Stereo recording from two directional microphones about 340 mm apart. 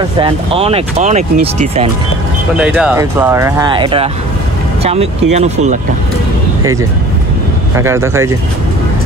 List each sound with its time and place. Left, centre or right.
0.2 s speech: centre
2.5 s speech: centre
7.7 s speech: centre